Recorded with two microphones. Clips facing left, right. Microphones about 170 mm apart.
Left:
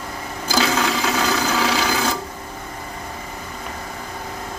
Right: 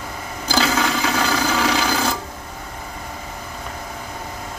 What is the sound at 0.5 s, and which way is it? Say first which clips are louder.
Filing: even; centre (ahead or behind).